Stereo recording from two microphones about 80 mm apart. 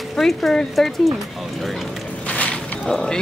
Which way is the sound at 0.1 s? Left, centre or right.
Centre.